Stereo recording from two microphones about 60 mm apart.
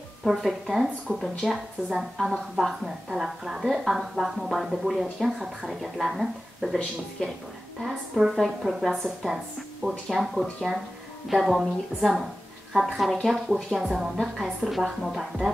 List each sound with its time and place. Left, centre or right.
0.2 s a woman's voice: centre
7.8 s a woman's voice: centre